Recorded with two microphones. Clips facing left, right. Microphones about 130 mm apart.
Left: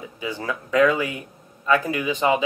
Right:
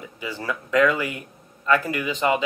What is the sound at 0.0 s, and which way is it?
Speech, 20° left (ahead or behind).